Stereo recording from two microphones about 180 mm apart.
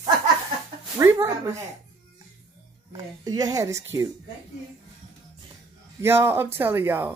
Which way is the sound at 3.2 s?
20° right (ahead or behind).